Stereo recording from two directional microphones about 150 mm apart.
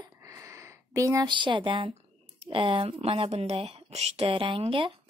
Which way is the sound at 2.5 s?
35° right (ahead or behind).